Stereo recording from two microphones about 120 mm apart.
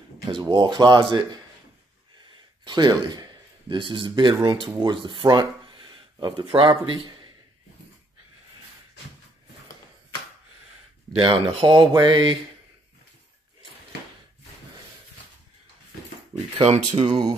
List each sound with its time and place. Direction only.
0.3 s speech: 40° right (ahead or behind)
2.6 s a man's voice: 40° right (ahead or behind)
11.1 s speech: 45° right (ahead or behind)
16.6 s speech: 65° right (ahead or behind)